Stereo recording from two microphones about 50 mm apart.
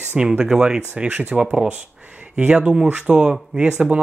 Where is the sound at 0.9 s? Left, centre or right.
Right.